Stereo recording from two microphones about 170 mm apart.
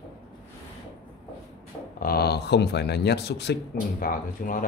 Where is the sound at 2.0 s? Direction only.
65° left (ahead or behind).